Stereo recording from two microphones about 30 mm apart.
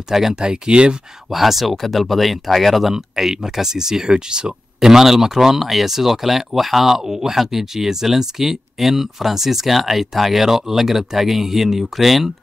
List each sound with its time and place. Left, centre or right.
0.1 s speech: centre
0.4 s speech: right
1.3 s speech: centre
2.9 s speech: centre
4.1 s speech: right
4.7 s speech: centre